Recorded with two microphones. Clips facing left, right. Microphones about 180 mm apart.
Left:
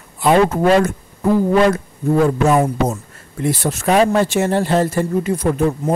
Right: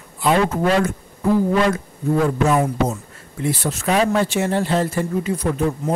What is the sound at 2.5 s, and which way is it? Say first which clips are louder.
Speech: left 3 dB; 45° left (ahead or behind).